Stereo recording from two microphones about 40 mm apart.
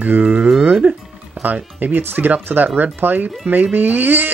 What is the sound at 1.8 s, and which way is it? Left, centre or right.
Speech, right.